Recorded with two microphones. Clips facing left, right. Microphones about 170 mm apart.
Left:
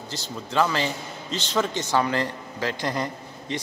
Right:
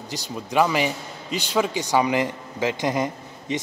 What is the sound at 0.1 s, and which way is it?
Speech, 15° right (ahead or behind).